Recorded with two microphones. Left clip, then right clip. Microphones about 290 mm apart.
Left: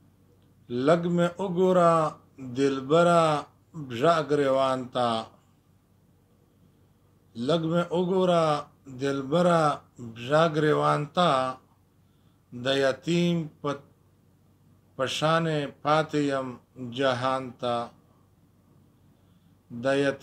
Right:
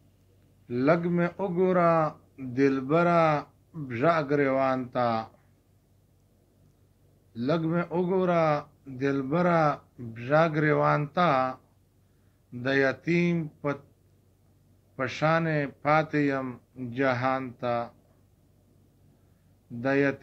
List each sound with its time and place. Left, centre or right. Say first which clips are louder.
0.7 s a man's voice: left 1 dB; left
7.5 s a man's voice: left 3 dB; left
12.6 s a man's voice: left 1 dB; left
15.0 s a man's voice: left 1 dB; left
19.8 s a man's voice: left 1 dB; left